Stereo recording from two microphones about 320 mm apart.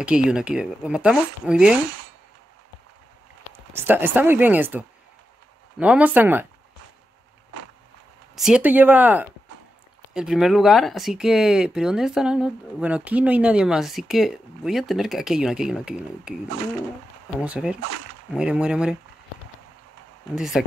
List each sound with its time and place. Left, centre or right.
0.0 s speech: centre
3.5 s speech: centre
8.4 s speech: centre
17.5 s speech: centre
20.3 s speech: centre